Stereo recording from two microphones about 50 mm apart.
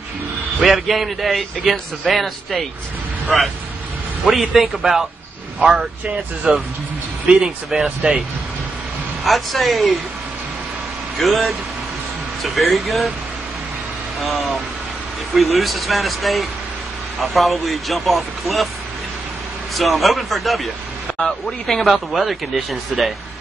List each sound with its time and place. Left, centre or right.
0.6 s a man's voice: centre
4.3 s a man's voice: centre
5.7 s speech: centre
9.2 s a man's voice: centre
11.1 s a man's voice: centre
15.3 s a man's voice: centre
19.7 s a man's voice: centre